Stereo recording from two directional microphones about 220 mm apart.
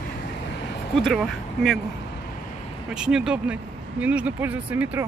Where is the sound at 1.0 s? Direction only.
Centre (ahead or behind).